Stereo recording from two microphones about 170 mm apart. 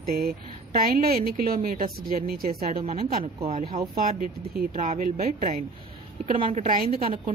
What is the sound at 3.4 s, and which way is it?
Speech, 45° right (ahead or behind).